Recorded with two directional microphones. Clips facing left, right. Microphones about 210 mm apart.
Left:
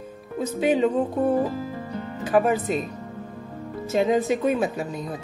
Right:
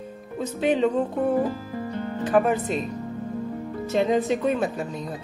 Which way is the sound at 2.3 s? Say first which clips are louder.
Left 1 dB; 5° left (ahead or behind).